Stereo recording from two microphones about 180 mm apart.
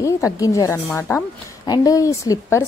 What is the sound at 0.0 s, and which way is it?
A woman's voice, 20° left (ahead or behind).